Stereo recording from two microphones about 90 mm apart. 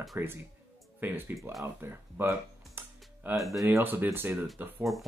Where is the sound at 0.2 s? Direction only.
25° right (ahead or behind).